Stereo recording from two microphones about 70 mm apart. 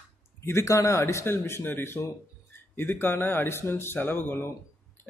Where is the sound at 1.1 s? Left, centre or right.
Left.